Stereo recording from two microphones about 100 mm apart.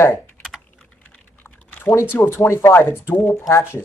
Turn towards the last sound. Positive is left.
turn(degrees=25)  # may be behind; listen again after turning